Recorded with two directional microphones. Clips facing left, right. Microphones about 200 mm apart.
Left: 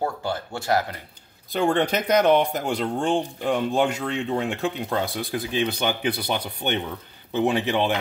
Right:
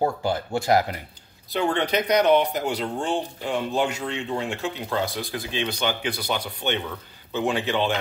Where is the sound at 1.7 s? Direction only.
50° left (ahead or behind).